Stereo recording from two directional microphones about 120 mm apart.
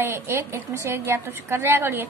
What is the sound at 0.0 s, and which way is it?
A woman's voice, 20° right (ahead or behind).